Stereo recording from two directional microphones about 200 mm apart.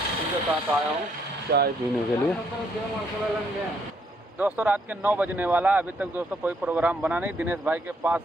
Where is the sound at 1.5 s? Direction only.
55° right (ahead or behind).